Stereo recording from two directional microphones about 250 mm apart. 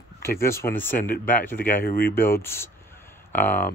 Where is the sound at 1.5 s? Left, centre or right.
Left.